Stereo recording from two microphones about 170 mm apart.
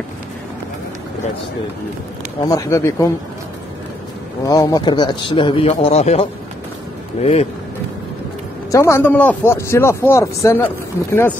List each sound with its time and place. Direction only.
2.4 s speech: 20° left (ahead or behind)
4.5 s speech: 20° left (ahead or behind); by 7.4 s 40° left (ahead or behind)
8.7 s speech: 15° left (ahead or behind)